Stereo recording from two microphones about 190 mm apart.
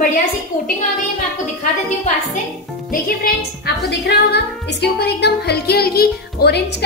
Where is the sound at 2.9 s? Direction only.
55° left (ahead or behind).